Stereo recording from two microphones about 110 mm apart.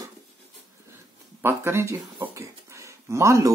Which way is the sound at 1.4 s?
20° right (ahead or behind).